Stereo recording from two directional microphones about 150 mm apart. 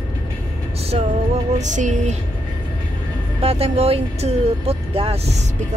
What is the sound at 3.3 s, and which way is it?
Speech, 40° right (ahead or behind).